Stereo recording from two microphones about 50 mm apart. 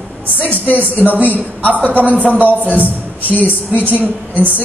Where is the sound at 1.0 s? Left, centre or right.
Left.